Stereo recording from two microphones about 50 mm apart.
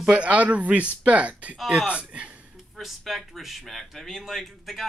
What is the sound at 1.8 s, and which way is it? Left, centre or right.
Speech, right.